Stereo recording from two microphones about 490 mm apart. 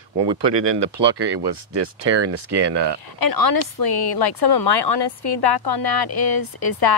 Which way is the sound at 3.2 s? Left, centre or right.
Left.